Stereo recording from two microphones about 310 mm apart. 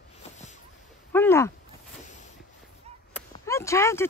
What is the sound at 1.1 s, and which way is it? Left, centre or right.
Speech, centre.